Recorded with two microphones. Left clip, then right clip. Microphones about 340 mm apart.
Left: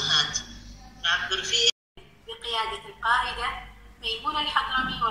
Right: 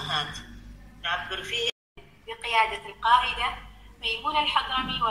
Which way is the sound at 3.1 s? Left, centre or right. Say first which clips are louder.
Right 3 dB; centre.